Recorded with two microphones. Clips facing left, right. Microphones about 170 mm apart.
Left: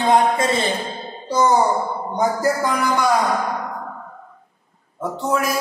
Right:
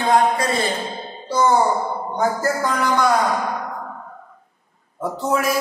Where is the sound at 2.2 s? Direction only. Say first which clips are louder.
Left 2 dB; 15° left (ahead or behind).